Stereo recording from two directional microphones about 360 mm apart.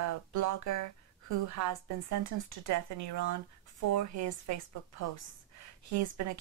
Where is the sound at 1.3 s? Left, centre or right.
Right.